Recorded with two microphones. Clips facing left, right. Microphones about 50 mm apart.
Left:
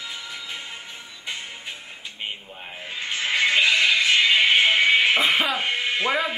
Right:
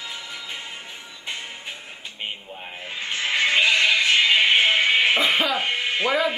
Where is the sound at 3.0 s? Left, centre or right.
Centre.